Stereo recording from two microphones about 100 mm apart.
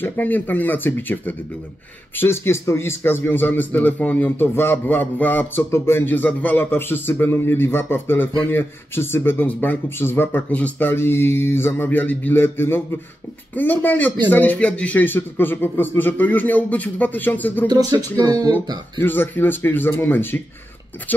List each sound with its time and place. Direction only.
0.0 s a man's voice: 20° left (ahead or behind)
17.6 s speech: 40° right (ahead or behind)
18.9 s a man's voice: 20° left (ahead or behind)